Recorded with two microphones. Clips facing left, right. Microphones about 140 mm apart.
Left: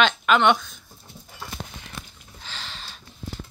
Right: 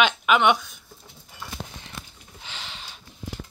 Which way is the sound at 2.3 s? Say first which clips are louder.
Left 1 dB; 15° right (ahead or behind).